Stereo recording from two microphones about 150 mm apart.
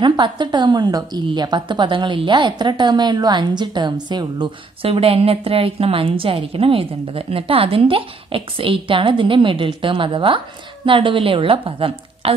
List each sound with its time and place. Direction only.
0.0 s a woman's voice: 30° right (ahead or behind)